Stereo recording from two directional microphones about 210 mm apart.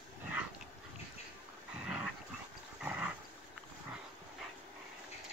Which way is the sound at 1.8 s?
5° right (ahead or behind).